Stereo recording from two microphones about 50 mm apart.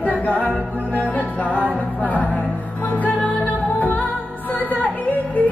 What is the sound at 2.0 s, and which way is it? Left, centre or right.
Music, left.